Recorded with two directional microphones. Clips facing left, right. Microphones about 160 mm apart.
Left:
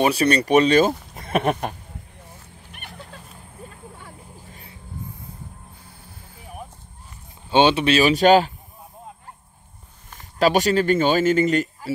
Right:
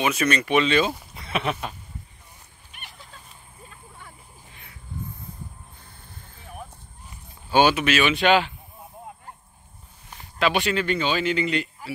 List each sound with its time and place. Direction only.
0.0 s speech: 35° left (ahead or behind); by 1.8 s 50° left (ahead or behind)
2.8 s vehicle: 60° left (ahead or behind)
5.9 s vehicle: 10° left (ahead or behind)
7.4 s speech: 25° left (ahead or behind)
10.4 s speech: 40° left (ahead or behind)